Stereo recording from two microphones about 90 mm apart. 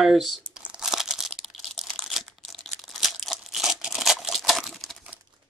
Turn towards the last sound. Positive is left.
turn(degrees=0)  # may be behind; listen again after turning